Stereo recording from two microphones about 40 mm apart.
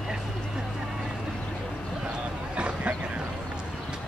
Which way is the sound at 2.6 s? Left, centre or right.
Right.